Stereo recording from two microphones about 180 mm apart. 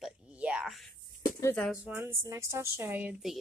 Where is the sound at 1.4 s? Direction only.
15° left (ahead or behind).